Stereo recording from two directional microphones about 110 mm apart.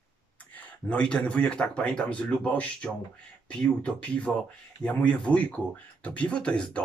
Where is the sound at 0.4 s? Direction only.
10° left (ahead or behind).